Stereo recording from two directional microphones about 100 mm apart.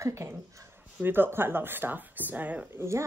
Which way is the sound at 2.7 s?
30° right (ahead or behind).